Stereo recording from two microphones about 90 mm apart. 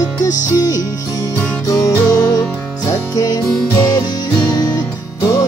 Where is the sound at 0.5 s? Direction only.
45° left (ahead or behind).